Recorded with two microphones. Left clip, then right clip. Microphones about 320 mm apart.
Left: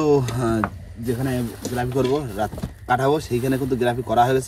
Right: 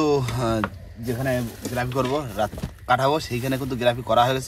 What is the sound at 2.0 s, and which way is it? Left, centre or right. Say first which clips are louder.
Speech: left 2 dB; centre.